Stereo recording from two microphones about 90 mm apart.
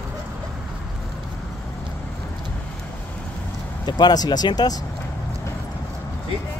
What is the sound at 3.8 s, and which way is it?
Speech, 50° left (ahead or behind).